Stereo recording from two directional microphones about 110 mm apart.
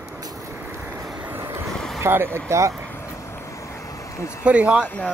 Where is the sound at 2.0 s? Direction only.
20° right (ahead or behind).